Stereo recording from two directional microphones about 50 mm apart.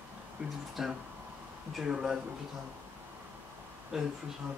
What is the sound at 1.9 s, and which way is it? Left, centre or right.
Speech, centre.